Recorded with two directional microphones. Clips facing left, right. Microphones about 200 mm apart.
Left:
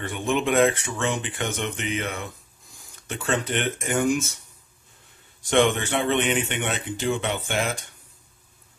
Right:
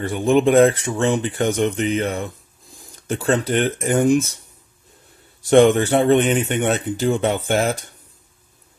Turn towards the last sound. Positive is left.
turn(degrees=-40)  # may be behind; listen again after turning